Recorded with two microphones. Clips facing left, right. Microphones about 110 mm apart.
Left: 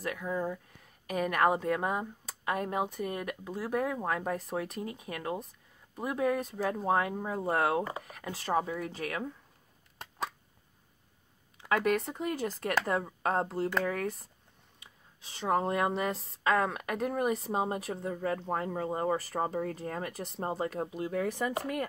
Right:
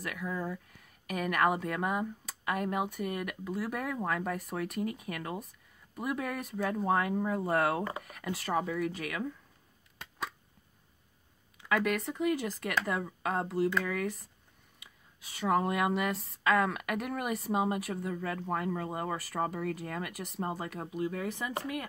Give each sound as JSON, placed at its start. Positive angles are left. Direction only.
{"t": 0.0, "sound": "speech", "side_deg": 35}
{"t": 11.7, "sound": "speech", "side_deg": 40}